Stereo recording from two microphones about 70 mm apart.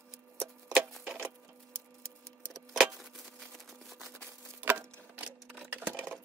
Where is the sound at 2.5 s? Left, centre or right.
Centre.